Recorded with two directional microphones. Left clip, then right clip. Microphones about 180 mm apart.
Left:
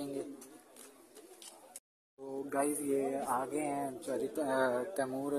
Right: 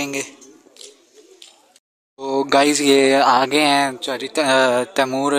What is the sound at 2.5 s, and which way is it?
Speech, 50° right (ahead or behind).